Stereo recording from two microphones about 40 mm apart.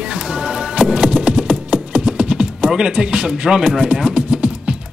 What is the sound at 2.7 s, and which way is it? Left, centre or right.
Speech, centre.